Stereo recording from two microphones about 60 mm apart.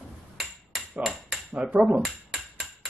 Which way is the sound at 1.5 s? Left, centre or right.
Centre.